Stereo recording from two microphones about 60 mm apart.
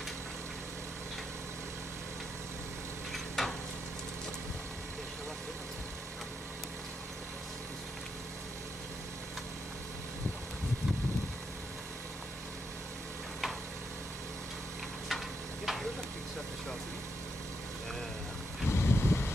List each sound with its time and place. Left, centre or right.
3.1 s stir: centre
15.0 s stir: centre
18.7 s vehicle: left